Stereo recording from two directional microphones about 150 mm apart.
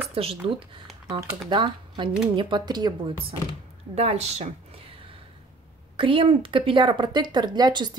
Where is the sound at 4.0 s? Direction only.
45° right (ahead or behind).